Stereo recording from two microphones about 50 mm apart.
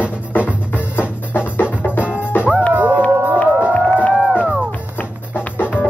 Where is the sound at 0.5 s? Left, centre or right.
Left.